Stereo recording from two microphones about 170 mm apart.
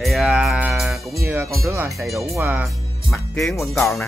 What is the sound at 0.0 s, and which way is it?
Music, centre (ahead or behind).